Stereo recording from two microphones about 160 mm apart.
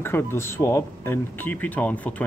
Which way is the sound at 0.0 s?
15° left (ahead or behind).